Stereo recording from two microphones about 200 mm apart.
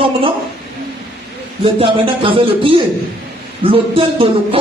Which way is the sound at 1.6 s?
25° right (ahead or behind).